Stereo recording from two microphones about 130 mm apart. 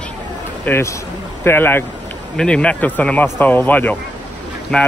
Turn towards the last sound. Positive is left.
turn(degrees=5)  # may be behind; listen again after turning